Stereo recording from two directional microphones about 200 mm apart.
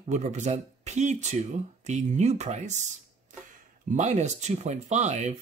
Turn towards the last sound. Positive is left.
turn(degrees=-35)  # may be behind; listen again after turning